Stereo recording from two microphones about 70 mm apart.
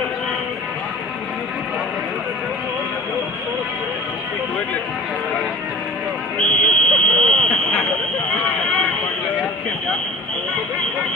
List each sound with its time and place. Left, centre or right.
6.3 s fire alarm: centre
8.4 s run: centre